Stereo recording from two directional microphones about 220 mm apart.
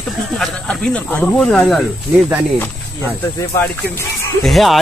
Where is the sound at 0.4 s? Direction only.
5° left (ahead or behind).